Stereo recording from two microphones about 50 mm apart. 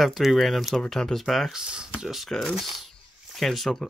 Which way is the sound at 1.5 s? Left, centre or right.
Centre.